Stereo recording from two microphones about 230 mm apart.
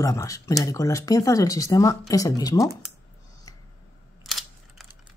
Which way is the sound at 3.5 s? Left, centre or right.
Centre.